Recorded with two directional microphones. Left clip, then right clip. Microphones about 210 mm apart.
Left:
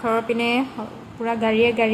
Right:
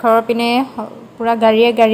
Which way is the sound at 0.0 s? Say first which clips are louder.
Right 8 dB; 25° right (ahead or behind).